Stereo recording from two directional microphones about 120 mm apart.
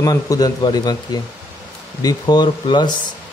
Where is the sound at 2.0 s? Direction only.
35° left (ahead or behind).